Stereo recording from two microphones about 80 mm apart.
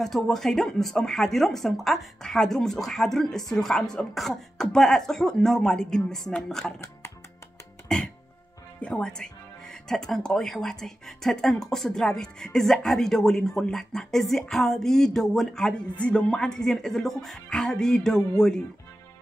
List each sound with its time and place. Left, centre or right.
0.0 s speech: centre
7.9 s music: centre
8.8 s speech: centre